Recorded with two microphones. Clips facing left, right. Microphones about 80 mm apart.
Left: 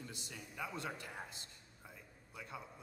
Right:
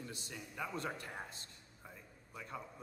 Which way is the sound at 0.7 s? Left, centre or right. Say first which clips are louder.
Right 2 dB; right.